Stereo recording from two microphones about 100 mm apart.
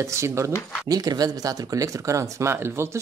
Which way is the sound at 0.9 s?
40° right (ahead or behind).